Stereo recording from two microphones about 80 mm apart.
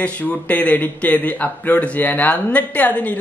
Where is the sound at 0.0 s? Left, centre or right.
Centre.